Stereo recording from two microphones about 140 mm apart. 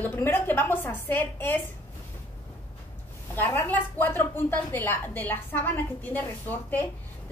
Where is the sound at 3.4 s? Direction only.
15° left (ahead or behind).